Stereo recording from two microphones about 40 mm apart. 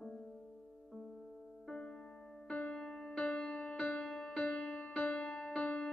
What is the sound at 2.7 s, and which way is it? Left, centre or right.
Music, centre.